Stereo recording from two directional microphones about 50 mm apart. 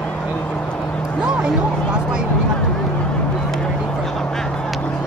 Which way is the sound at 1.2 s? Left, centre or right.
Centre.